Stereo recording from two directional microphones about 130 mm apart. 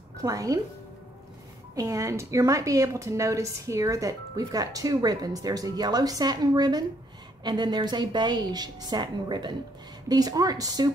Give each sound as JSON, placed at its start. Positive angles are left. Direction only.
{"t": 0.2, "sound": "speech", "side_deg": -25}
{"t": 1.8, "sound": "a woman's voice", "side_deg": -25}